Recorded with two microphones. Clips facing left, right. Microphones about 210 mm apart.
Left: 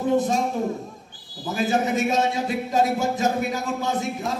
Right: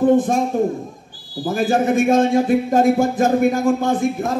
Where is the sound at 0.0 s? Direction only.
50° right (ahead or behind).